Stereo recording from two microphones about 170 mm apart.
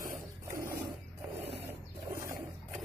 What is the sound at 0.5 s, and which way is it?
Wild animals, 15° right (ahead or behind).